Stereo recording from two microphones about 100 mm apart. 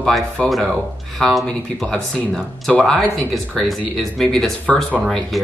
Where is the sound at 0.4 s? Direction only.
5° left (ahead or behind).